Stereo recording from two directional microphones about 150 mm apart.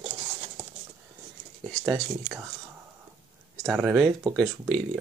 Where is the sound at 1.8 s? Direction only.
Centre (ahead or behind).